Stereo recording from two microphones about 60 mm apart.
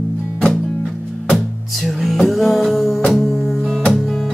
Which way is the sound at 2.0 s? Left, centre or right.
Centre.